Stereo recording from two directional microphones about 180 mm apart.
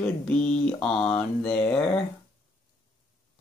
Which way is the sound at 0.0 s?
5° left (ahead or behind).